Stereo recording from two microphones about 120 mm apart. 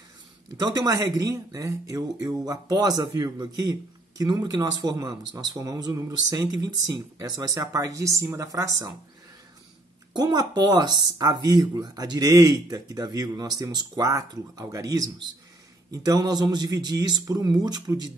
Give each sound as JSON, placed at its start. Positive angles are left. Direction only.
{"t": 0.6, "sound": "speech", "side_deg": -30}
{"t": 10.1, "sound": "speech", "side_deg": -35}